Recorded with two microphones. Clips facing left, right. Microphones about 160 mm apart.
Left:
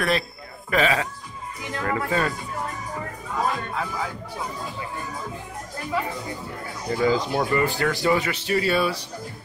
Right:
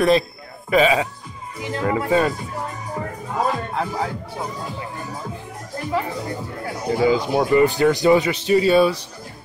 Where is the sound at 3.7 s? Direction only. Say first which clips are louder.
Right 5 dB; 30° right (ahead or behind).